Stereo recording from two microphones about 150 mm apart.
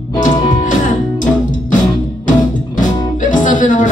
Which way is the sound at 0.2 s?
60° left (ahead or behind).